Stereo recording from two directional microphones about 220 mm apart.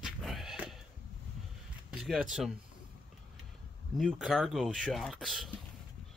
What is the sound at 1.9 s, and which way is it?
Speech, centre (ahead or behind).